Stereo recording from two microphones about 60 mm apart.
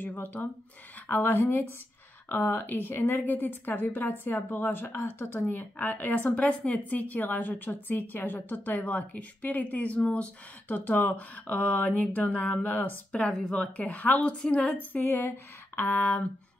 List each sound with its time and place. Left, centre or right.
0.0 s a woman's voice: left; by 13.7 s centre
13.7 s a woman's voice: left
16.0 s speech: left